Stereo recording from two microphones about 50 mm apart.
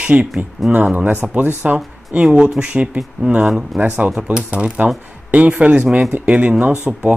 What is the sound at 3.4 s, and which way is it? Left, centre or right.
Speech, centre.